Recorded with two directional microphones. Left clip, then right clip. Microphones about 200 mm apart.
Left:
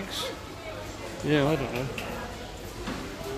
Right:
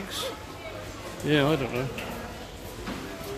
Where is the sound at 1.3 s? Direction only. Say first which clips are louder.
Right 1 dB; 10° right (ahead or behind).